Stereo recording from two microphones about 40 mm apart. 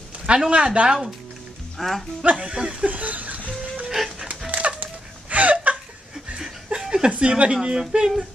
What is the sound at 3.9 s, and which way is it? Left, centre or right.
Dog, centre.